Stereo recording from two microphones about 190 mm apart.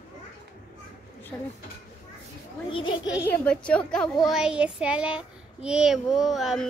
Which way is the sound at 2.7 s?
25° left (ahead or behind).